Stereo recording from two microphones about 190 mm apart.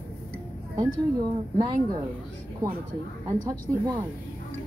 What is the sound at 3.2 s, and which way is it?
Speech, 20° right (ahead or behind).